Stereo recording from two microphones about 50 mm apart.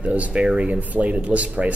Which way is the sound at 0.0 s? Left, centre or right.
Right.